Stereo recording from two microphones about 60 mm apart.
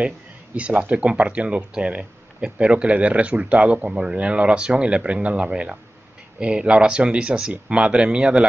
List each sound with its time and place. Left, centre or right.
0.6 s speech: right